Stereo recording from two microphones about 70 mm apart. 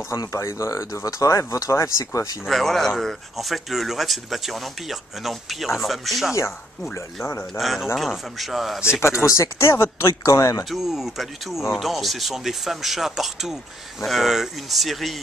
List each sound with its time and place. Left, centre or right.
0.1 s speech: left
2.4 s speech: centre
7.5 s speech: centre
9.2 s speech: left
10.6 s speech: centre